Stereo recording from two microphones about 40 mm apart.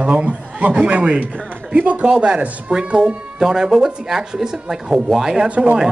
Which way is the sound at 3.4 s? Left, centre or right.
Centre.